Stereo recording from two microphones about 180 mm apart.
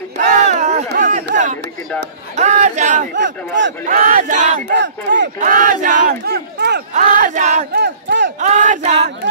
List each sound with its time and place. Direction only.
0.2 s a sound: 45° right (ahead or behind)
1.3 s speech: 45° right (ahead or behind)
3.2 s speech: 85° right
3.8 s speech: 45° right (ahead or behind)
4.7 s speech: 80° right
5.4 s speech: 50° right (ahead or behind); by 6.8 s 65° right (ahead or behind)
6.9 s speech: 45° right (ahead or behind)
7.7 s crowd: 75° right (ahead or behind)
8.4 s speech: 45° right (ahead or behind)